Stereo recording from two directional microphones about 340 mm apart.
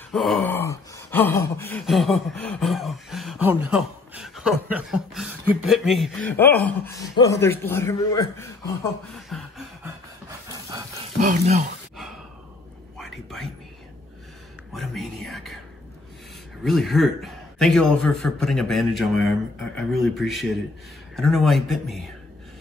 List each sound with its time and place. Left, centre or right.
0.1 s gasp: centre
11.1 s speech: right
12.9 s a sound: centre
14.7 s gasp: centre
16.6 s gasp: centre